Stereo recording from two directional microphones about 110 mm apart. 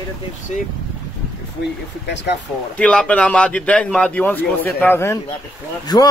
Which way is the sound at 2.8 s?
10° left (ahead or behind).